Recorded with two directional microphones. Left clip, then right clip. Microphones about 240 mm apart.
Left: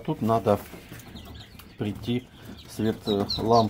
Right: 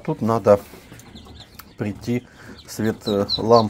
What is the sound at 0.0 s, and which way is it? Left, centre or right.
Speech, right.